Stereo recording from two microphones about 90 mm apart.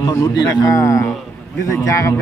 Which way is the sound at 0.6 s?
35° left (ahead or behind).